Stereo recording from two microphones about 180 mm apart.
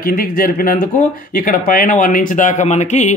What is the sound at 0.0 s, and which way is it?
Speech, 55° left (ahead or behind).